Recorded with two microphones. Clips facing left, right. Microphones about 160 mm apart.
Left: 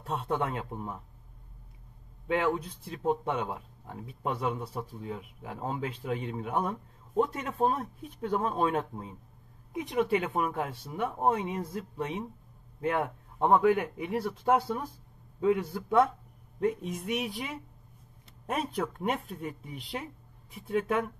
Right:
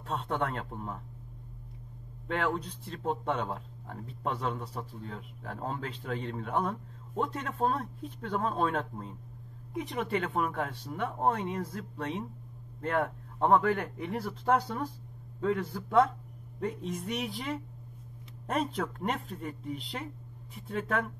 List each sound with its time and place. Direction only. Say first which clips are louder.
0.0 s speech: left 1 dB; 10° left (ahead or behind)
2.2 s speech: left 3 dB; 5° left (ahead or behind)
18.5 s speech: even; 5° left (ahead or behind)